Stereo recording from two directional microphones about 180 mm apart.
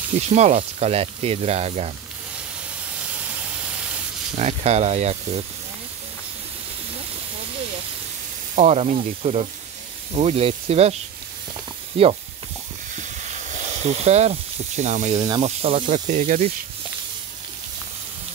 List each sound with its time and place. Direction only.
0.3 s speech: 40° right (ahead or behind)
4.4 s speech: 35° right (ahead or behind)
8.5 s speech: 40° right (ahead or behind)
13.5 s speech: 40° right (ahead or behind)